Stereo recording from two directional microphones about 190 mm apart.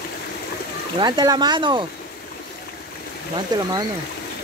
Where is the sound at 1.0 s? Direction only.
20° right (ahead or behind).